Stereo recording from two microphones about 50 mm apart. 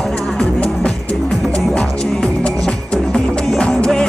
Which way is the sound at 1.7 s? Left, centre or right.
Centre.